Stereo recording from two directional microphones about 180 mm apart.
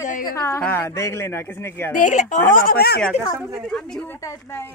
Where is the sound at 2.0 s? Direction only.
45° left (ahead or behind); by 3.0 s 60° left (ahead or behind).